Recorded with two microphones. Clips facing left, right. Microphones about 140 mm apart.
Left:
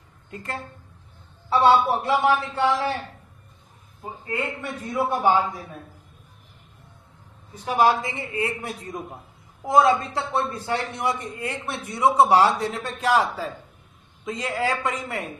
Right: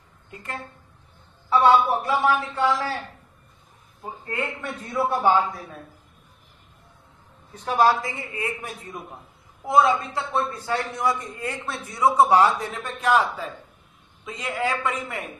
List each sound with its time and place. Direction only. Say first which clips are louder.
1.9 s a man's voice: left 1 dB; 25° left (ahead or behind)
4.0 s a man's voice: left 1 dB; 5° left (ahead or behind)
7.6 s a man's voice: even; 15° left (ahead or behind)
7.9 s a man's voice: left 1 dB; 25° left (ahead or behind)